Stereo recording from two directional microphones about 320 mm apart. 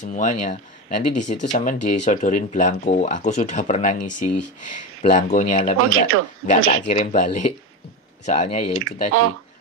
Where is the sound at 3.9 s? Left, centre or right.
Left.